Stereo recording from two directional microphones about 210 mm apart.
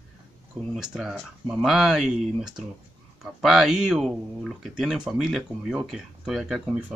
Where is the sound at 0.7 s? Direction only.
5° right (ahead or behind).